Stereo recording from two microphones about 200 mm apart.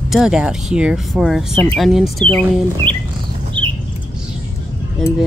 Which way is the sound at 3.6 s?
25° right (ahead or behind).